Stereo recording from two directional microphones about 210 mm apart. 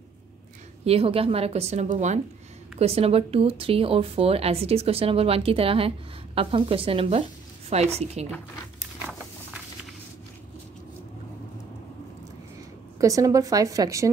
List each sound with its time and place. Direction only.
0.8 s a woman's voice: 25° right (ahead or behind)
13.0 s a woman's voice: 15° right (ahead or behind)